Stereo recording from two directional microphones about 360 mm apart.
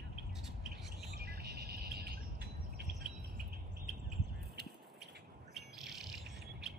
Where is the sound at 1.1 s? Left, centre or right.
Right.